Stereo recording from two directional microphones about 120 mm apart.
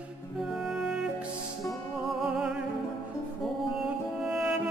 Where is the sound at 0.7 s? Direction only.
5° right (ahead or behind).